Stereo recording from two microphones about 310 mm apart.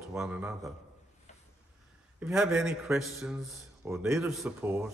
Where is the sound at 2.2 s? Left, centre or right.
Centre.